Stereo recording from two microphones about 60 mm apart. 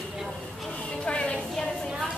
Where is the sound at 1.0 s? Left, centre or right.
Centre.